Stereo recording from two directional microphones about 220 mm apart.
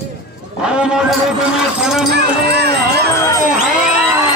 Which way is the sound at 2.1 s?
50° right (ahead or behind).